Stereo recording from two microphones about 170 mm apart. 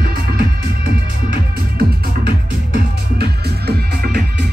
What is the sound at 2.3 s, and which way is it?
Music, 65° right (ahead or behind).